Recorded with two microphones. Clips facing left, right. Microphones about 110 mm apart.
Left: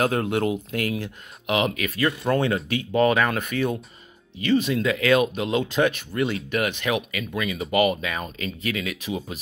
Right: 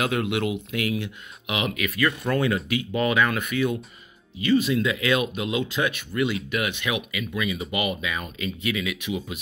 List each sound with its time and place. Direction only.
0.0 s speech: 40° left (ahead or behind)